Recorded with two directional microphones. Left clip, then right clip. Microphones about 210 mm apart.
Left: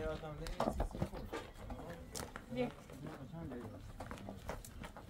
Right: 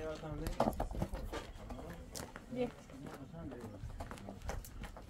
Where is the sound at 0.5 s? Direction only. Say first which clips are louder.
Right 3 dB; 30° right (ahead or behind).